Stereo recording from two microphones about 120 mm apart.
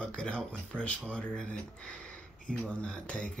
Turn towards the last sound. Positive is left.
turn(degrees=10)  # may be behind; listen again after turning